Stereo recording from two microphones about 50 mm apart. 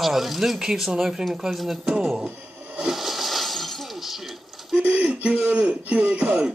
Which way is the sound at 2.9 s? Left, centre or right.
Centre.